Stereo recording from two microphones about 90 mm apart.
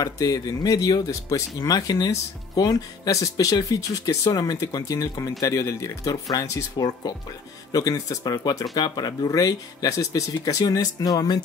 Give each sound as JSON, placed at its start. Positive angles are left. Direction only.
{"t": 0.0, "sound": "speech", "side_deg": 45}